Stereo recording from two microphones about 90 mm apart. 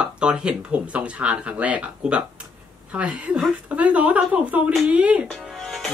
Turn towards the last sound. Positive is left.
turn(degrees=0)  # may be behind; listen again after turning